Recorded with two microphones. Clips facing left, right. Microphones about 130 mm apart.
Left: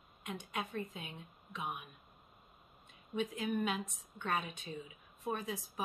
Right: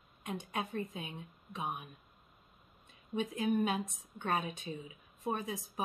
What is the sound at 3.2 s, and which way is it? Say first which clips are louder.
Speech: right 4 dB; 40° right (ahead or behind).